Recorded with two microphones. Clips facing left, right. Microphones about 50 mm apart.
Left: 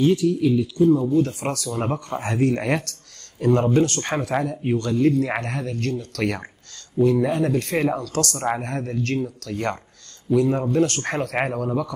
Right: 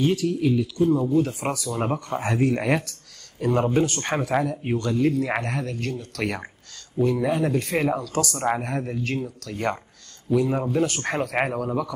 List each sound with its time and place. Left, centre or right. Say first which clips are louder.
0.2 s speech: left 3 dB; right; by 11.9 s centre